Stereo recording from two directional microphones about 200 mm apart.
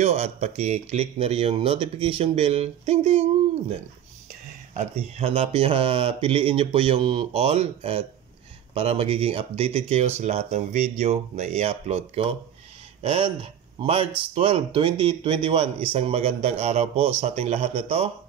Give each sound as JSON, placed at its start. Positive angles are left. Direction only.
{"t": 0.0, "sound": "speech", "side_deg": -35}
{"t": 4.7, "sound": "speech", "side_deg": -30}